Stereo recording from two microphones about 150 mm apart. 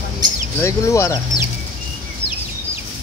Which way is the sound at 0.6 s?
20° left (ahead or behind).